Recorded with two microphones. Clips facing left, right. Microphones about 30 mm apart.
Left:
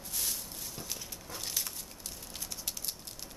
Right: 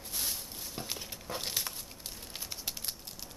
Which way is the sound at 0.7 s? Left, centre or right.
Right.